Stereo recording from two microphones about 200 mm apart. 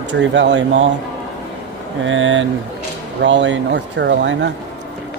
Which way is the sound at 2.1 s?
75° right (ahead or behind).